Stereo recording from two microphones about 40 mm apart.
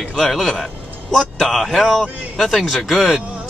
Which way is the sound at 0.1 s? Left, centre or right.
Centre.